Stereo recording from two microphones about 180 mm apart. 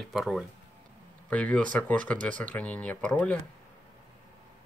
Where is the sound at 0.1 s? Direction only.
Centre (ahead or behind).